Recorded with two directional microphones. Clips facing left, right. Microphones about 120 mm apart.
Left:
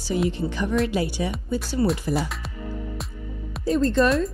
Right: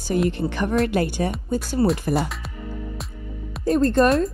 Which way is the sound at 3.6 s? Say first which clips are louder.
Right 2 dB; 50° right (ahead or behind).